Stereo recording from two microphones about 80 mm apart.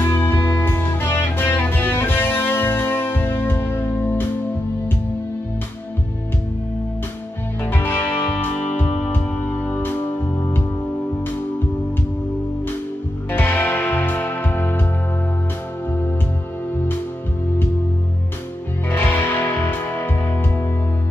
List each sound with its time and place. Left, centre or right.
0.0 s music: left
7.6 s music: left
13.3 s music: left
18.9 s music: left